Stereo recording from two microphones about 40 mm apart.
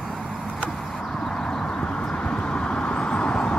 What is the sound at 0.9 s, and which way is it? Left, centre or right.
Vehicle, centre.